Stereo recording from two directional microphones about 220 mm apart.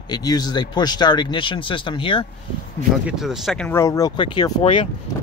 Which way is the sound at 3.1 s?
Centre (ahead or behind).